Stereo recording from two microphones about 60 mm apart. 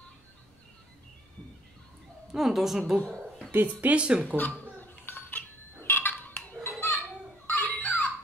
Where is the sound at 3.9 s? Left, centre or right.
Centre.